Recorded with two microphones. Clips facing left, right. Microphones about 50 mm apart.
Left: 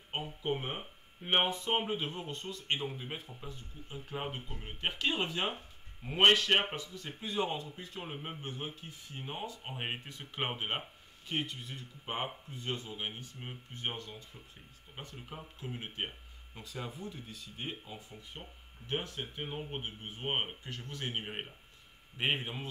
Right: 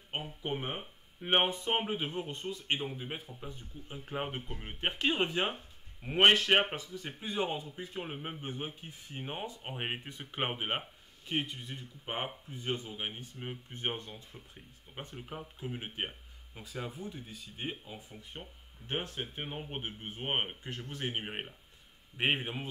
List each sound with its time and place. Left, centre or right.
0.1 s speech: centre
3.4 s speech: centre
15.1 s speech: centre